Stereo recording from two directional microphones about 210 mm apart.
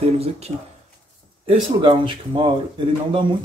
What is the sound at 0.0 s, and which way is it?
Speech, 30° right (ahead or behind).